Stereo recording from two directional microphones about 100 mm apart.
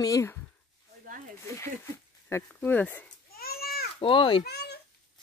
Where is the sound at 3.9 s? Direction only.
60° left (ahead or behind).